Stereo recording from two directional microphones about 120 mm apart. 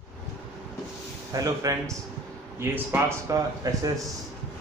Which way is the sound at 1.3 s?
30° right (ahead or behind).